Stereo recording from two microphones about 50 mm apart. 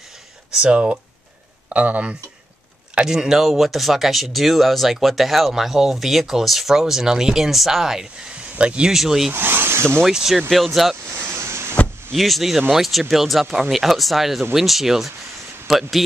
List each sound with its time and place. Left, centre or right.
0.6 s speech: right
1.7 s speech: right
2.9 s speech: centre
8.5 s speech: right
8.9 s speech: centre
9.3 s speech: right
10.5 s speech: centre
11.1 s a sound: right
12.2 s speech: centre